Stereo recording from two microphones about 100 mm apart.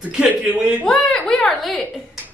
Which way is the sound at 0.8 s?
10° left (ahead or behind).